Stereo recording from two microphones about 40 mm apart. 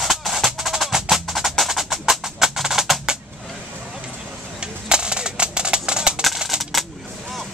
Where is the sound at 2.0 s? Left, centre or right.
Centre.